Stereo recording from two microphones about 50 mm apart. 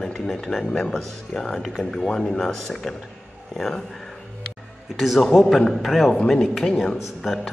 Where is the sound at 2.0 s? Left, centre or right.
Centre.